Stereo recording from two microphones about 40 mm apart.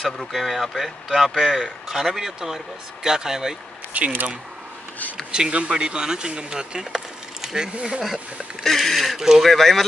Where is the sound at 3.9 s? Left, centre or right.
Right.